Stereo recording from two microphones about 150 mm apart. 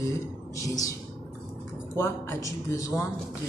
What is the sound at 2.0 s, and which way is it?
Speech, 15° left (ahead or behind).